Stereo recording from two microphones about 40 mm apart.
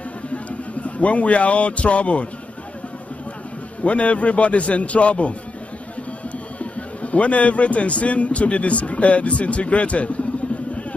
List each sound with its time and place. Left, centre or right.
0.3 s speech: left
3.8 s a man's voice: left
6.6 s a man's voice: left